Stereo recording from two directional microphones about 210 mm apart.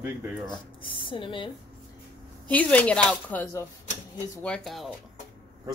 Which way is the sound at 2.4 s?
5° left (ahead or behind).